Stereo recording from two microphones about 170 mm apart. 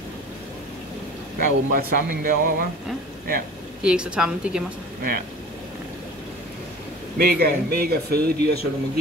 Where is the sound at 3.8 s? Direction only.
5° right (ahead or behind).